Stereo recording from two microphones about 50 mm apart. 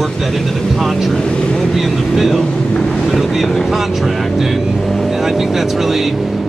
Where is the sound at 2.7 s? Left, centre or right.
Centre.